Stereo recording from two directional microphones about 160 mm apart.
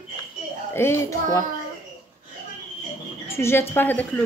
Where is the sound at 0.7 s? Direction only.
15° left (ahead or behind).